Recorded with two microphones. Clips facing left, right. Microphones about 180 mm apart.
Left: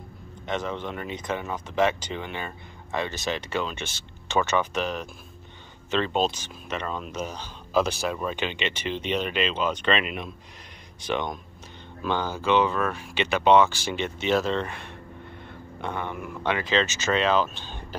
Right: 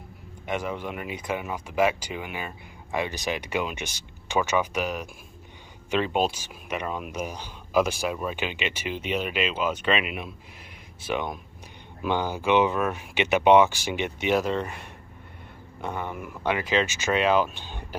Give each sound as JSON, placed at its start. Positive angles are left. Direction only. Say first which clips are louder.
{"t": 0.5, "sound": "speech", "louder": "even", "side_deg": -10}